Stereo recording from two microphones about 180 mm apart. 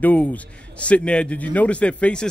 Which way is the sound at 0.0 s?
10° left (ahead or behind).